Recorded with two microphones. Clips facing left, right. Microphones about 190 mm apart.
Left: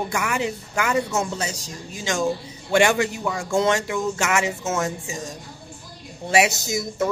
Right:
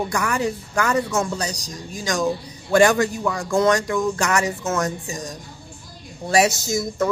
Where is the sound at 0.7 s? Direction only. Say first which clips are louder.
Right 1 dB; 25° left (ahead or behind).